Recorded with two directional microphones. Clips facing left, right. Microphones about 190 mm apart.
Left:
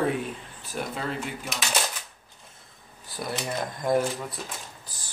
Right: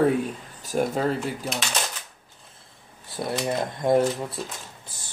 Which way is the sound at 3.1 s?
25° right (ahead or behind).